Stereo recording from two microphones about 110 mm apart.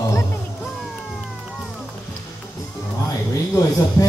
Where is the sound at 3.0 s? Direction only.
35° left (ahead or behind).